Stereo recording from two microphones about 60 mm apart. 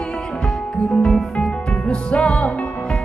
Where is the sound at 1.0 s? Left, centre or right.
Centre.